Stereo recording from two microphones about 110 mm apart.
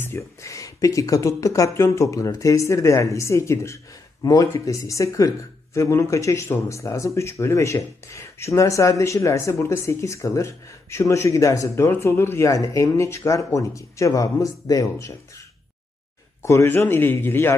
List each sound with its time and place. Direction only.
0.0 s speech: 25° left (ahead or behind)
16.4 s speech: 25° left (ahead or behind)